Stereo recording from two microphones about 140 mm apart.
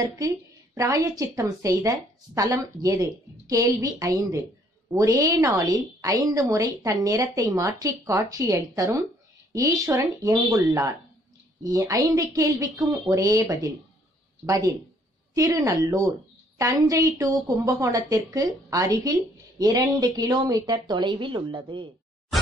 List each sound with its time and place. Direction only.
0.0 s a woman's voice: 30° right (ahead or behind)